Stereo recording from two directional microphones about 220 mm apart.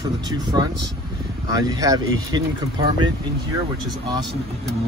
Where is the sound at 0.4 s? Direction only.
20° right (ahead or behind).